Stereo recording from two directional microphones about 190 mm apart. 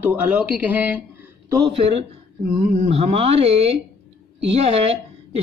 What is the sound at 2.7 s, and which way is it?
Speech, 35° right (ahead or behind).